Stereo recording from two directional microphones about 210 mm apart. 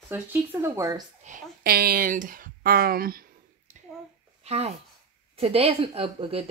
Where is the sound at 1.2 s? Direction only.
40° right (ahead or behind).